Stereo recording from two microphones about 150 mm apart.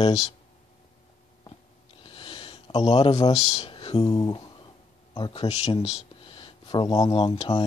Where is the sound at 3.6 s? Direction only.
40° left (ahead or behind).